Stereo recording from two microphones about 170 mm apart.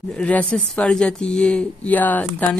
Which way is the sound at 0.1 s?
10° left (ahead or behind).